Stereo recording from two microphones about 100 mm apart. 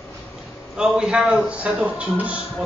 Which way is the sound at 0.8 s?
5° right (ahead or behind).